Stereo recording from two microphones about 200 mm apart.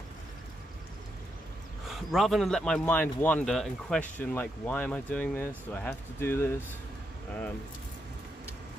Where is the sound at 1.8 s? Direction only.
Centre (ahead or behind).